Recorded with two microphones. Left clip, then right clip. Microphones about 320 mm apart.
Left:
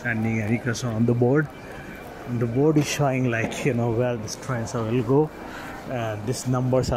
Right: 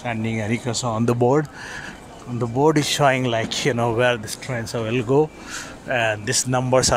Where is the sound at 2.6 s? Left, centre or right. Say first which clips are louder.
Right 4 dB; right.